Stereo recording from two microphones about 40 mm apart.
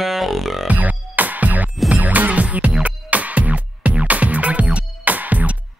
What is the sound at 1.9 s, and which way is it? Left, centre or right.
Music, right.